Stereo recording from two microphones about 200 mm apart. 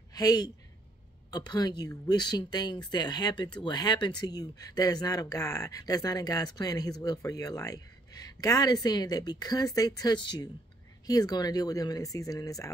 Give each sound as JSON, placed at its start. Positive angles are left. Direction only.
{"t": 0.1, "sound": "speech", "side_deg": 20}